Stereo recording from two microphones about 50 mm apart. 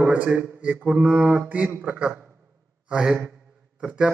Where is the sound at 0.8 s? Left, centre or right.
Centre.